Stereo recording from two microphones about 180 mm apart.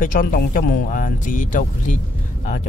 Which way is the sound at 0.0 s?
50° left (ahead or behind).